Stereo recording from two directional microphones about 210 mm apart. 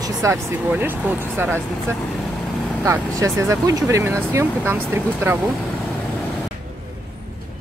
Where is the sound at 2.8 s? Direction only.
15° right (ahead or behind).